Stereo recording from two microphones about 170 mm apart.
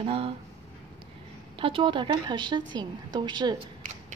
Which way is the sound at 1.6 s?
30° right (ahead or behind).